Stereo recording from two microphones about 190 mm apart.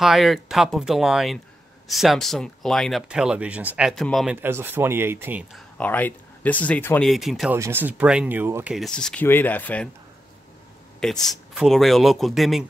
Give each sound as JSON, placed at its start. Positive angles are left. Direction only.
{"t": 0.0, "sound": "speech", "side_deg": 0}
{"t": 4.4, "sound": "speech", "side_deg": -10}
{"t": 5.5, "sound": "speech", "side_deg": 10}
{"t": 7.5, "sound": "speech", "side_deg": -15}
{"t": 8.7, "sound": "speech", "side_deg": 0}
{"t": 11.0, "sound": "speech", "side_deg": 0}